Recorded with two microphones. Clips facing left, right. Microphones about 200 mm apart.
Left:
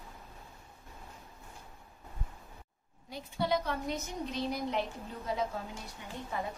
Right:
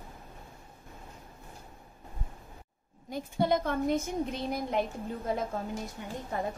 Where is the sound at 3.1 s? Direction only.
50° right (ahead or behind).